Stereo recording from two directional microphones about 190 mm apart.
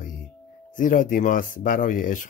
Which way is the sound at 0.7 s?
45° left (ahead or behind).